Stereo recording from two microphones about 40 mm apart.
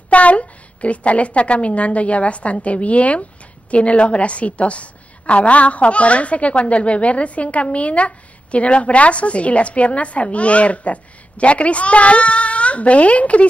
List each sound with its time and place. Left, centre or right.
0.1 s a woman's voice: left